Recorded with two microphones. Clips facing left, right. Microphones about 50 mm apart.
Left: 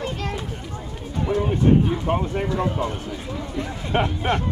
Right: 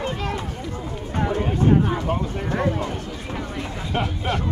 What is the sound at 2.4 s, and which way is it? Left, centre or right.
Speech, right.